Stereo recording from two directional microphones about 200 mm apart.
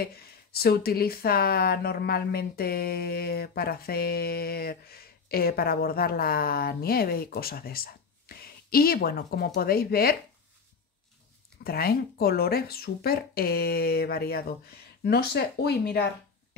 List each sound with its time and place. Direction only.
0.0 s speech: 50° left (ahead or behind)
11.6 s speech: 50° left (ahead or behind)